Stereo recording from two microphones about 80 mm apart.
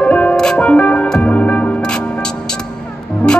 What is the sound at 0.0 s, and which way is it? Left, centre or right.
Music, centre.